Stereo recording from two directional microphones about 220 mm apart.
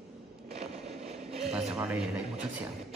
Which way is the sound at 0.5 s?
30° right (ahead or behind).